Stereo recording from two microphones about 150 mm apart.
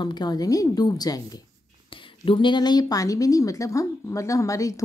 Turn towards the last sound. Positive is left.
turn(degrees=20)  # may be behind; listen again after turning